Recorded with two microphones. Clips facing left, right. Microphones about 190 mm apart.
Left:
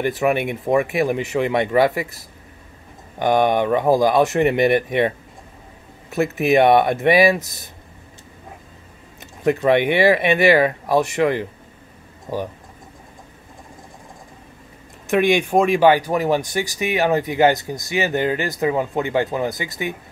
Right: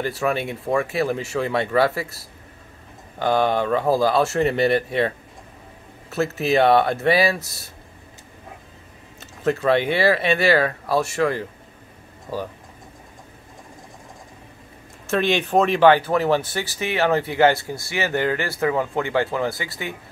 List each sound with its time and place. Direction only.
0.0 s speech: 20° left (ahead or behind)
9.2 s speech: 15° left (ahead or behind)
15.0 s speech: 15° left (ahead or behind)